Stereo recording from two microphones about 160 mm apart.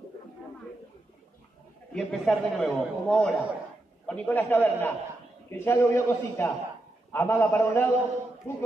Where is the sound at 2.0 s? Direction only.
Centre (ahead or behind).